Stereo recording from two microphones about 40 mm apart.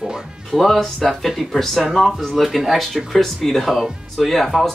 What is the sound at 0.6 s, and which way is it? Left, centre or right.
Speech, centre.